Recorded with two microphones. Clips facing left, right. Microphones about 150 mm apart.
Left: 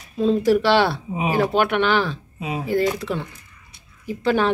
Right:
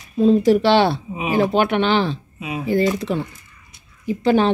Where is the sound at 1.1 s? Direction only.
40° left (ahead or behind).